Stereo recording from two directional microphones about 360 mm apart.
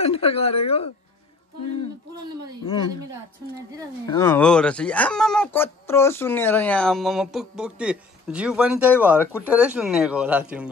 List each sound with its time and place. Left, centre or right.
0.0 s speech: centre
4.2 s speech: centre